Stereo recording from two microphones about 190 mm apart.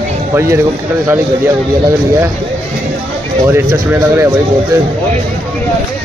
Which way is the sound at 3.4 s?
15° right (ahead or behind).